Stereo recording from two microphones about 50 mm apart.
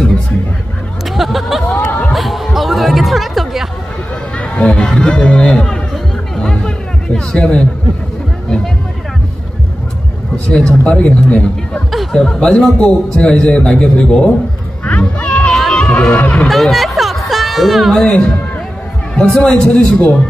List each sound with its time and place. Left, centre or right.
1.1 s a sound: centre
1.7 s a sound: left
2.1 s music: centre
4.4 s speech: left
6.3 s music: centre
10.3 s speech: centre
10.7 s speech: left
12.1 s speech: centre
14.9 s music: left
16.2 s speech: left
16.4 s a sound: centre
18.0 s speech: centre